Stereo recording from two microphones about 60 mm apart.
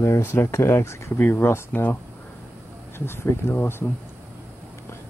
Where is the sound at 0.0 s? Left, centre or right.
Left.